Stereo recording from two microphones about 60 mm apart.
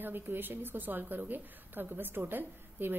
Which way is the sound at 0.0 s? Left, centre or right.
Right.